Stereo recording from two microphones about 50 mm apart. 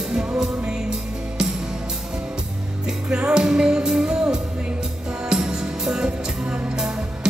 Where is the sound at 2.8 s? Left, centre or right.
Centre.